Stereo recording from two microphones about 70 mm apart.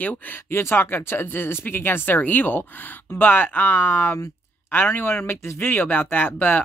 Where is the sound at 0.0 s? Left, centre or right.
Left.